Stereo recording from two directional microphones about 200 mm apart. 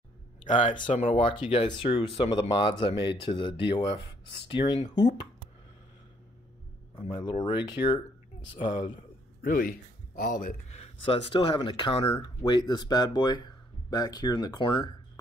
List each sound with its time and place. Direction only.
0.5 s speech: 35° left (ahead or behind)
0.9 s speech: 25° left (ahead or behind)
7.0 s speech: 20° left (ahead or behind)
9.4 s a man's voice: 45° left (ahead or behind)
10.7 s speech: 30° left (ahead or behind)